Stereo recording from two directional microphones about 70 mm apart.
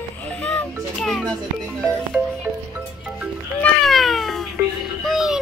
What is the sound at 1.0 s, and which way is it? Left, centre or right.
Music, centre.